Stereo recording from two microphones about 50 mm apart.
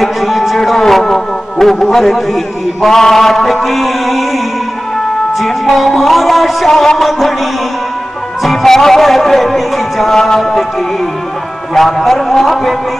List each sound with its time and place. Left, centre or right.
0.0 s music: centre
3.6 s speech: centre
5.4 s speech: centre
8.4 s speech: centre
11.7 s speech: centre